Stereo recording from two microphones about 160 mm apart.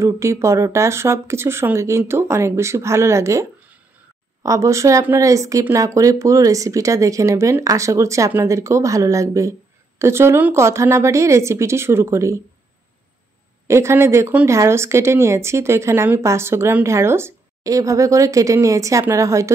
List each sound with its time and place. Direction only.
0.0 s speech: 20° right (ahead or behind)
13.7 s speech: 15° right (ahead or behind)